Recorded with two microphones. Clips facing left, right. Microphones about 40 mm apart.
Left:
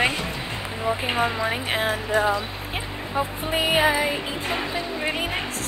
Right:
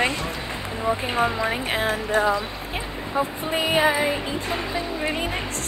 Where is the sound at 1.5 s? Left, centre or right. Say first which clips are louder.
Even; centre.